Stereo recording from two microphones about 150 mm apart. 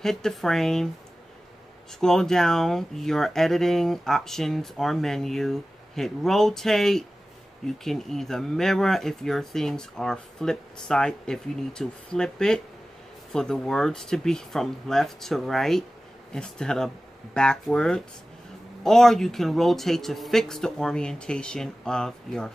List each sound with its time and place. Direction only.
0.0 s speech: centre (ahead or behind)
2.0 s speech: 5° left (ahead or behind)